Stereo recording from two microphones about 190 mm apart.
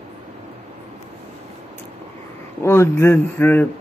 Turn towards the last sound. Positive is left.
turn(degrees=10)  # may be behind; listen again after turning